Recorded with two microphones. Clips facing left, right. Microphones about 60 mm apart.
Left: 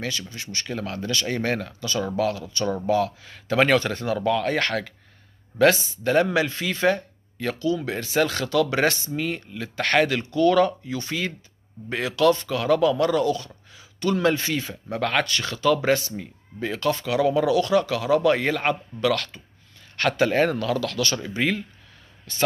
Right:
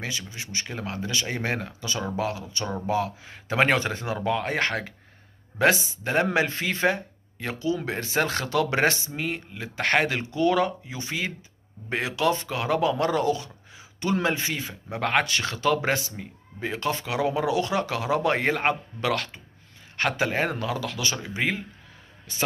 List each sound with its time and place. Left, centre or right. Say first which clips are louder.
0.3 s speech: left 3 dB; centre
6.3 s speech: left 1 dB; right
6.9 s speech: left 5 dB; centre
13.4 s a sound: right 1 dB; centre
14.4 s speech: left 3 dB; centre
14.9 s speech: even; right